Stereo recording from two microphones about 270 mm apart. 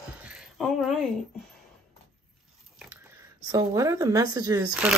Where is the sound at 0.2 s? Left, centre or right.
Centre.